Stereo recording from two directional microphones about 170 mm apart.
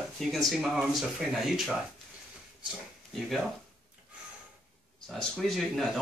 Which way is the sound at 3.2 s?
Centre (ahead or behind).